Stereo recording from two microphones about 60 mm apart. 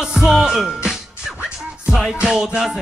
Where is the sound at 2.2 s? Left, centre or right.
Centre.